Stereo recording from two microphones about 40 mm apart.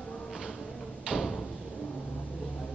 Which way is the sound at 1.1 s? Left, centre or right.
Right.